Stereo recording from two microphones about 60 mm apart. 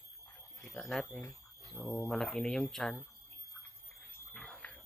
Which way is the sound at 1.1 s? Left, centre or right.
Left.